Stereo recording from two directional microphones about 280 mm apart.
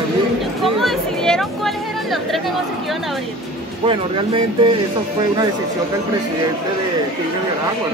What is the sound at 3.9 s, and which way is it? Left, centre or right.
Speech, centre.